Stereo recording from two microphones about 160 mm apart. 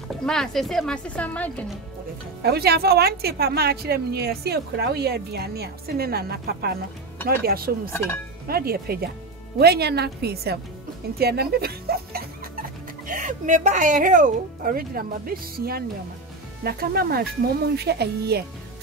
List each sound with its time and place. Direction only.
0.1 s speech: 5° left (ahead or behind)
2.4 s a woman's voice: 85° right
9.6 s a woman's voice: 85° right
13.0 s speech: 55° right (ahead or behind); by 17.3 s 70° right (ahead or behind)
17.7 s speech: 90° right